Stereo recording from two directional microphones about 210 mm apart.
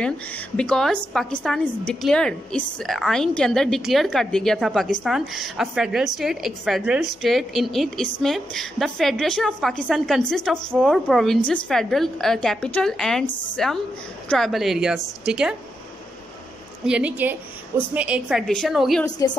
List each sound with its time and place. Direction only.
0.6 s a woman's voice: 5° left (ahead or behind)
16.8 s a woman's voice: 5° right (ahead or behind)
19.0 s a woman's voice: 20° left (ahead or behind)